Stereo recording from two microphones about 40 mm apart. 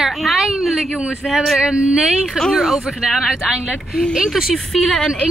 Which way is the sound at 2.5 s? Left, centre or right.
Centre.